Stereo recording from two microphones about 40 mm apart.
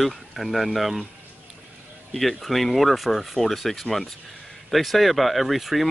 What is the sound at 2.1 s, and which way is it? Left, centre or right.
Speech, centre.